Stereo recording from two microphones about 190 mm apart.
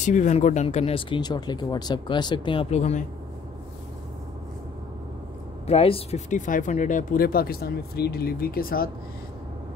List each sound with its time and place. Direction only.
0.0 s speech: 40° left (ahead or behind)
5.7 s speech: 30° left (ahead or behind); by 8.9 s 50° left (ahead or behind)